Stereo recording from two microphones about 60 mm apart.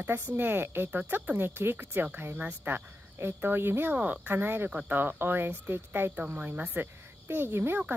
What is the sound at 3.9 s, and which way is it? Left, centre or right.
Speech, right.